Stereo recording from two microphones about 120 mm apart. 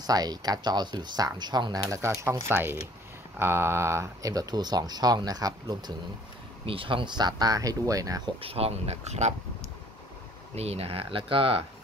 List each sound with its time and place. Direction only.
0.0 s speech: 30° right (ahead or behind)
6.6 s speech: 45° right (ahead or behind); by 8.2 s 30° right (ahead or behind)
8.4 s speech: 55° right (ahead or behind)
10.5 s speech: 60° right (ahead or behind)